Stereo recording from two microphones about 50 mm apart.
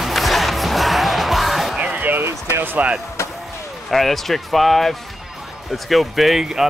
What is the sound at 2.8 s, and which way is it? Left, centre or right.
Speech, right.